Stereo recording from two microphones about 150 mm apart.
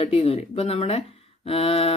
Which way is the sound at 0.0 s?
40° left (ahead or behind).